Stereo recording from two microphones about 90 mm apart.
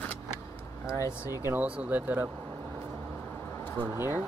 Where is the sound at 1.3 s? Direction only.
25° right (ahead or behind).